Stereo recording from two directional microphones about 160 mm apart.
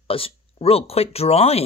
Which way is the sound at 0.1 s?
35° left (ahead or behind).